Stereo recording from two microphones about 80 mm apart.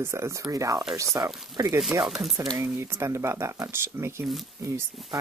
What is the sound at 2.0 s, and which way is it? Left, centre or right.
Speech, centre.